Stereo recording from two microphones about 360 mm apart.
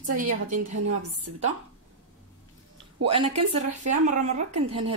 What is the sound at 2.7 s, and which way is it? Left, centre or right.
Speech, centre.